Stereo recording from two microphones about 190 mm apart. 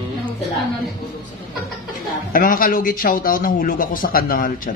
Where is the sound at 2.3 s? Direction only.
50° left (ahead or behind).